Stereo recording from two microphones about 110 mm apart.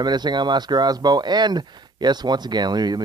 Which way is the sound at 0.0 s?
40° right (ahead or behind).